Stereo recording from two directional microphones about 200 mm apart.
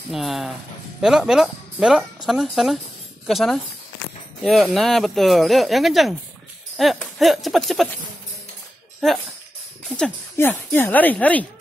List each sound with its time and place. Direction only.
0.1 s speech: centre (ahead or behind)
9.0 s speech: centre (ahead or behind)